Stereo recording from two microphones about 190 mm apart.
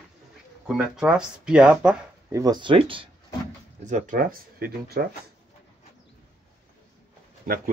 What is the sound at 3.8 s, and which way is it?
Speech, 40° right (ahead or behind).